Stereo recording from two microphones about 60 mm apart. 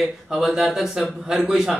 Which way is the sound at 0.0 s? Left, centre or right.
Centre.